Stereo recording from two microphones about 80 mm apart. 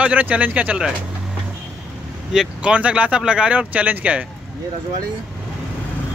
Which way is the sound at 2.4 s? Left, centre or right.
Centre.